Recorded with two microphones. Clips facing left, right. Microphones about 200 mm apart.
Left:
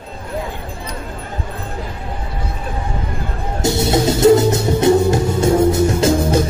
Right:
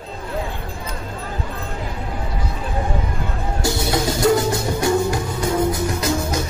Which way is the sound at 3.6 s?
25° left (ahead or behind).